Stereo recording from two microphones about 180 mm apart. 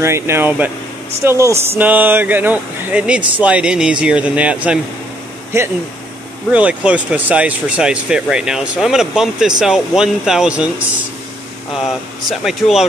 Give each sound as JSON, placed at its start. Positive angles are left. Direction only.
{"t": 0.0, "sound": "speech", "side_deg": -15}
{"t": 11.7, "sound": "speech", "side_deg": 0}